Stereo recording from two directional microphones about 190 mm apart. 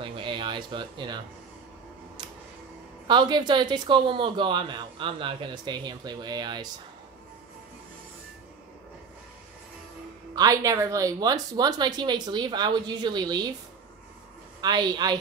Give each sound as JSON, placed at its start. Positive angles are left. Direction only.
{"t": 0.0, "sound": "a sound", "side_deg": -25}
{"t": 3.1, "sound": "speech", "side_deg": -25}
{"t": 10.3, "sound": "speech", "side_deg": -20}
{"t": 14.6, "sound": "speech", "side_deg": -20}